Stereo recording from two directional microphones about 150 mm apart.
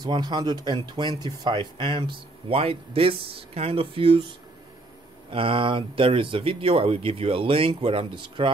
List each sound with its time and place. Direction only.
0.0 s speech: 30° right (ahead or behind)
5.3 s speech: 35° right (ahead or behind)